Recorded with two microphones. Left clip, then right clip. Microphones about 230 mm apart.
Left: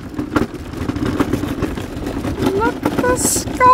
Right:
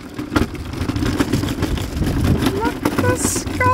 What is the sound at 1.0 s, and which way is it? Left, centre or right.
Vehicle, right.